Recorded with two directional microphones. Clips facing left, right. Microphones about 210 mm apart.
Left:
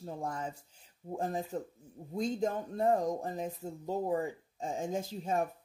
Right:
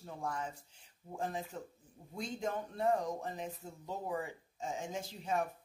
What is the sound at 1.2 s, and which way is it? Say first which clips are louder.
Speech: left 4 dB; 45° left (ahead or behind).